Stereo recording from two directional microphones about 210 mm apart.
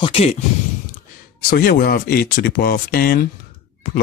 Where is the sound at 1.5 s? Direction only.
45° left (ahead or behind).